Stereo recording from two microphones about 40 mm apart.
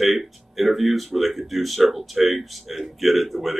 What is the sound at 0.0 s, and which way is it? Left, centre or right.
Speech, centre.